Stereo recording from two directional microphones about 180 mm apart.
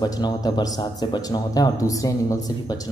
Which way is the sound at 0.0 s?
20° left (ahead or behind).